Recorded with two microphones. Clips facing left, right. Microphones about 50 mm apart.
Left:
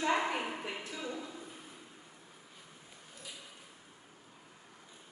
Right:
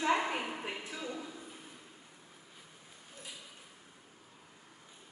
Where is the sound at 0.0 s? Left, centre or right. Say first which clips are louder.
Even; centre.